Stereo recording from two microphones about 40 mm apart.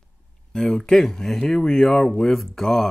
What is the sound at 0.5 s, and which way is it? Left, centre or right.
Speech, centre.